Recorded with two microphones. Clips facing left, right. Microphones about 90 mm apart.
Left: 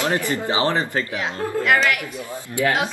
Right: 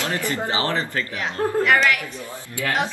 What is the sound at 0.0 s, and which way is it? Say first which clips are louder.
Speech: left 3 dB; 20° left (ahead or behind).